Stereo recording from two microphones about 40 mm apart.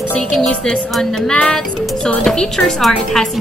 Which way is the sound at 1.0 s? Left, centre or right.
Centre.